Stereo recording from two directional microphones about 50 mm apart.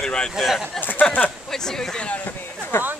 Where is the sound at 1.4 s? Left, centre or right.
Centre.